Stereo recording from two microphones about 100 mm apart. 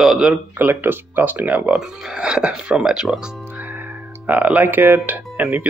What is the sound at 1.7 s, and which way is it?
Speech, 5° right (ahead or behind).